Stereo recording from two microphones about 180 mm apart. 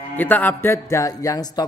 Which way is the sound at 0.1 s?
10° left (ahead or behind).